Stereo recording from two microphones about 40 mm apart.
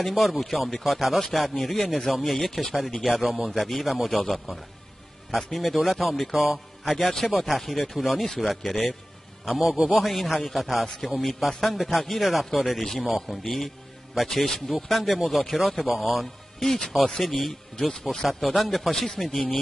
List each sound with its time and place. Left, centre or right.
0.0 s a man's voice: centre
9.8 s a man's voice: right
10.0 s a man's voice: centre
18.4 s a man's voice: centre
18.9 s speech: centre